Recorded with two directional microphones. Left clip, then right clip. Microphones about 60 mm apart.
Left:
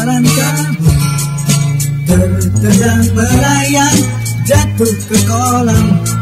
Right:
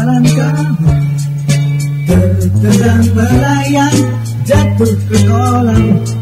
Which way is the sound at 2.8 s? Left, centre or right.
Left.